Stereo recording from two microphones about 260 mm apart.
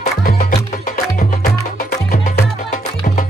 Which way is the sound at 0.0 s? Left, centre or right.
Left.